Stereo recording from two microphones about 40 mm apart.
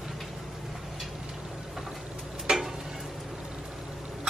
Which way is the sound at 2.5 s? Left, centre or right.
Right.